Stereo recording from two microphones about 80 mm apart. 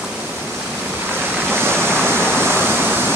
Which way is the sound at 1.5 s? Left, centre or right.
Right.